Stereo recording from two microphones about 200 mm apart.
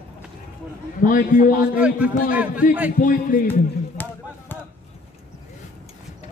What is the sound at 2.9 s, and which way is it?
Speech, 40° left (ahead or behind).